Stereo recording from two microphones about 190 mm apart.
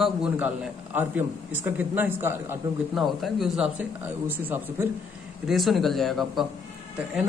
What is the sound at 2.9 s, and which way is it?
A man's voice, centre (ahead or behind).